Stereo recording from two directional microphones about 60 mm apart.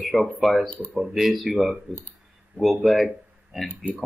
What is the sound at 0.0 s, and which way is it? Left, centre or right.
Speech, centre.